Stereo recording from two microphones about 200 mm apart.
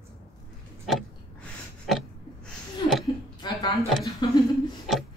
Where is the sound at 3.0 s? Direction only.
20° left (ahead or behind).